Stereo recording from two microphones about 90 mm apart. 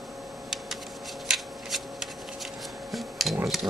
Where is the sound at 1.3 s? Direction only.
5° right (ahead or behind).